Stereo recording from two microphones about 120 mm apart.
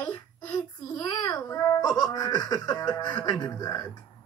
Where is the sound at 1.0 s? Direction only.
20° left (ahead or behind).